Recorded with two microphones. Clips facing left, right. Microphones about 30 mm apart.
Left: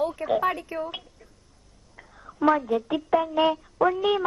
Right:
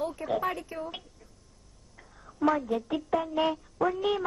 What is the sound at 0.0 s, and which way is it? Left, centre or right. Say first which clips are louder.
A woman's voice: left 6 dB; left.